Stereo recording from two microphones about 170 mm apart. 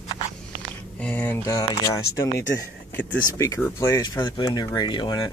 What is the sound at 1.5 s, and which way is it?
Speech, 20° left (ahead or behind).